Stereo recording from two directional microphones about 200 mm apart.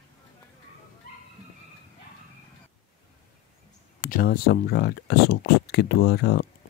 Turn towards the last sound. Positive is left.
turn(degrees=55)  # may be behind; listen again after turning